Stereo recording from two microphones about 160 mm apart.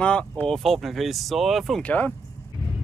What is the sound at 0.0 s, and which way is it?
Speech, 5° left (ahead or behind).